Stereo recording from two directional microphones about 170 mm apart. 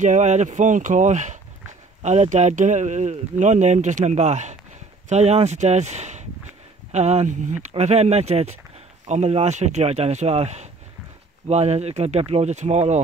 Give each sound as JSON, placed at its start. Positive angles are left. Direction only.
{"t": 0.0, "sound": "speech", "side_deg": -45}